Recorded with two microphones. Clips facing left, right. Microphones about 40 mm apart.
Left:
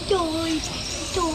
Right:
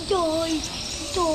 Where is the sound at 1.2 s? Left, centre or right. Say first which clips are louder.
Right 1 dB; centre.